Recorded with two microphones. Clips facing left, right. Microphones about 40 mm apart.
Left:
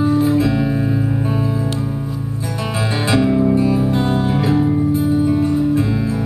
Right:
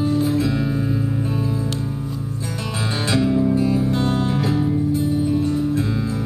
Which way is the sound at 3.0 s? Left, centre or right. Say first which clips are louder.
Left 3 dB; centre.